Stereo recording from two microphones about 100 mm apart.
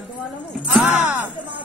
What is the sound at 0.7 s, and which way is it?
Music, centre (ahead or behind).